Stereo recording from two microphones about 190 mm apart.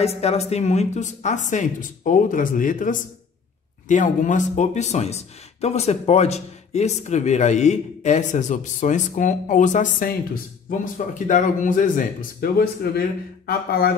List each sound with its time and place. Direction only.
0.0 s speech: 35° left (ahead or behind); by 13.9 s 55° left (ahead or behind)